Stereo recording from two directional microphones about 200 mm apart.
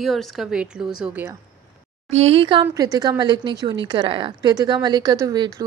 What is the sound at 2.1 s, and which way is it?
A woman's voice, 30° right (ahead or behind).